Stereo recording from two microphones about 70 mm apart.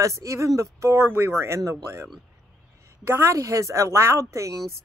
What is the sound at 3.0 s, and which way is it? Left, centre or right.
Speech, right.